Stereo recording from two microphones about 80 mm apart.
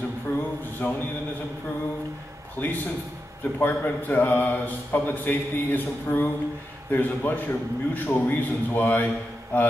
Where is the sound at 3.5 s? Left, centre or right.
Left.